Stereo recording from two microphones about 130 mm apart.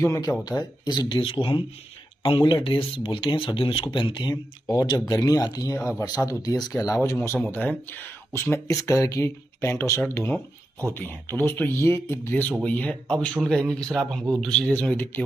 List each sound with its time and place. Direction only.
0.0 s speech: 25° left (ahead or behind)
7.5 s speech: 15° left (ahead or behind)